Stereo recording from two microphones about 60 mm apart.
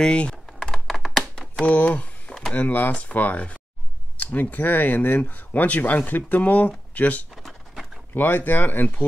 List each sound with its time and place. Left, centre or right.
0.0 s speech: centre
0.5 s computer keyboard: centre
0.8 s computer keyboard: centre
1.6 s speech: left